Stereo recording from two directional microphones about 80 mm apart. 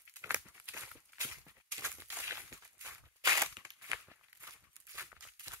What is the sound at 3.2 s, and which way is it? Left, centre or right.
Crushing, right.